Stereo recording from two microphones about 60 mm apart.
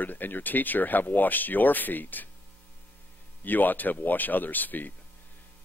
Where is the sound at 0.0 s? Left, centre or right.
Left.